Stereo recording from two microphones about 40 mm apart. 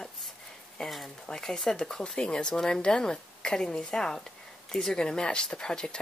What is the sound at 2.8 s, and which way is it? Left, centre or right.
Speech, left.